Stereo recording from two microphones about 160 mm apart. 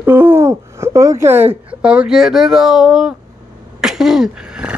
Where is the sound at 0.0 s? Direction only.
10° right (ahead or behind).